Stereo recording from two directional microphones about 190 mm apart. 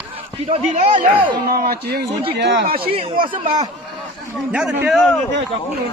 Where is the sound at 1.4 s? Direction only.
55° right (ahead or behind).